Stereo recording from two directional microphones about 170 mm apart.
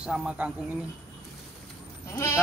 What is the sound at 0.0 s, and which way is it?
Speech, 5° right (ahead or behind).